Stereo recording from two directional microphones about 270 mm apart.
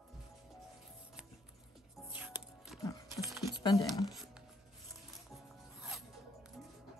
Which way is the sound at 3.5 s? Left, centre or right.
Centre.